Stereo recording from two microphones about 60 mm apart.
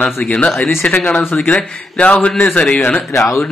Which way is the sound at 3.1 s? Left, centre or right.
Left.